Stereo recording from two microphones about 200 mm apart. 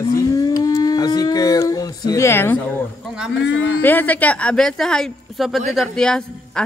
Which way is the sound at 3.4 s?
65° left (ahead or behind).